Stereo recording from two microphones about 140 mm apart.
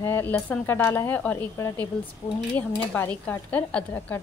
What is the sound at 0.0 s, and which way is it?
A woman's voice, 15° left (ahead or behind).